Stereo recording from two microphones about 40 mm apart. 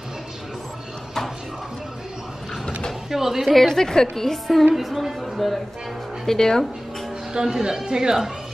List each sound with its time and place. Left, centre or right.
3.1 s speech: centre
3.4 s a woman's voice: centre
4.7 s a woman's voice: centre
6.2 s a woman's voice: centre
7.3 s speech: centre